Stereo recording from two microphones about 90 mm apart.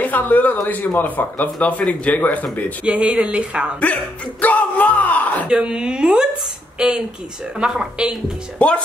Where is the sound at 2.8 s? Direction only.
10° right (ahead or behind).